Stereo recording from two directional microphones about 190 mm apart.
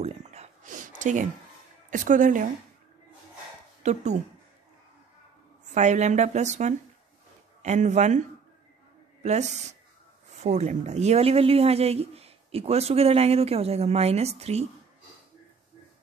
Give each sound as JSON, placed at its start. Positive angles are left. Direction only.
{"t": 0.0, "sound": "a sound", "side_deg": -35}
{"t": 1.9, "sound": "a woman's voice", "side_deg": -45}
{"t": 3.8, "sound": "speech", "side_deg": -35}
{"t": 5.8, "sound": "speech", "side_deg": -40}